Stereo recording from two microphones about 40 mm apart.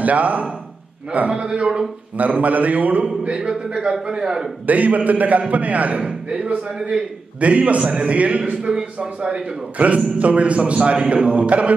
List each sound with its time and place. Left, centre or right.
0.0 s a man's voice: right
1.3 s a man's voice: right
2.1 s a man's voice: right
3.4 s a man's voice: right
4.6 s a man's voice: right
6.0 s a man's voice: right
8.7 s a man's voice: centre
9.3 s a man's voice: right